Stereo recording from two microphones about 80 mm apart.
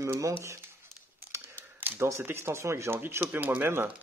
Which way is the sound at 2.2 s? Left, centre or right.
Right.